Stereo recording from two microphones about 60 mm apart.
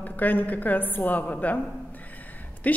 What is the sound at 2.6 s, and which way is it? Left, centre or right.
Speech, left.